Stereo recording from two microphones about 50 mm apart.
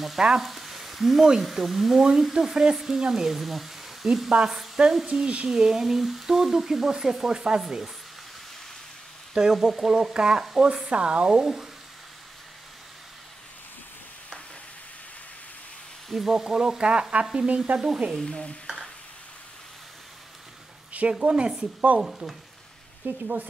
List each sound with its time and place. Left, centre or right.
0.4 s speech: centre
5.0 s speech: right
5.5 s speech: centre
9.3 s speech: centre
11.4 s speech: centre
16.1 s speech: centre
18.2 s speech: centre
21.1 s speech: centre
23.0 s speech: right